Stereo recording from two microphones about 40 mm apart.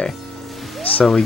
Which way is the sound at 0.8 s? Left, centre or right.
Left.